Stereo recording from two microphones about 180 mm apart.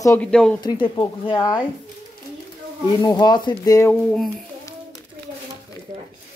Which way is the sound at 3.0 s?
20° left (ahead or behind).